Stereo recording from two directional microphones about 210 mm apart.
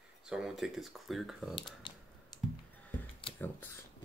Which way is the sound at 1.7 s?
20° left (ahead or behind).